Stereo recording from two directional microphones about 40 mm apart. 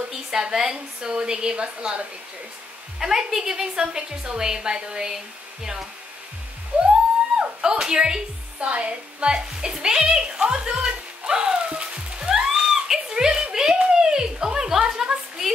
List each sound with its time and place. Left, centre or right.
0.3 s a woman's voice: centre
6.7 s music: right
7.3 s speech: centre
11.8 s music: right
12.3 s a sound: centre
15.4 s frying: centre